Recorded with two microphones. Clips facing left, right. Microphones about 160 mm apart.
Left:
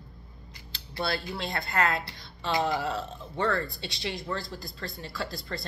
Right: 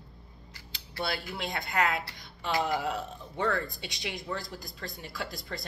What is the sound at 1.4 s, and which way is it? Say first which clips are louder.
Speech: even; 15° right (ahead or behind).